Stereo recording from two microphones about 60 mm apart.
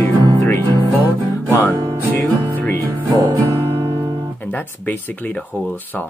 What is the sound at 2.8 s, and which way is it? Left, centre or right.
Music, right.